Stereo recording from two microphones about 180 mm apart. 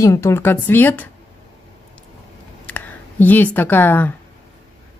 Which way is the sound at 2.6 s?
10° left (ahead or behind).